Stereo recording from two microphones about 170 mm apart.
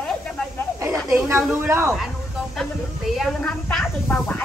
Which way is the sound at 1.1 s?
15° right (ahead or behind).